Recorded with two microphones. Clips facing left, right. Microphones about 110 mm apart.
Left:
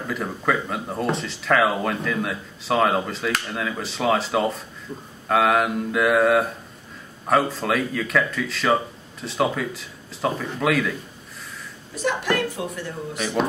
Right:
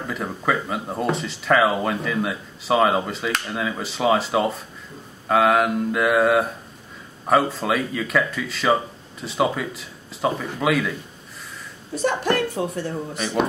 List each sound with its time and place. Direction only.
0.0 s speech: centre (ahead or behind)
12.0 s a woman's voice: 35° right (ahead or behind)
13.1 s speech: centre (ahead or behind)